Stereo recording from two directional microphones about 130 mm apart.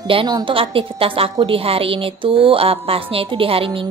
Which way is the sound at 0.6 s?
45° right (ahead or behind).